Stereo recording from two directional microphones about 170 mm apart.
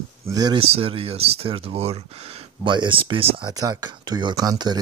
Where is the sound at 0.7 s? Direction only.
35° right (ahead or behind).